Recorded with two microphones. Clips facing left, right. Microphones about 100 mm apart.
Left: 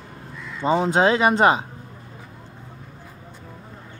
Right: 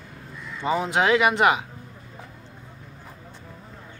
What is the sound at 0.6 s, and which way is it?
Speech, 30° left (ahead or behind).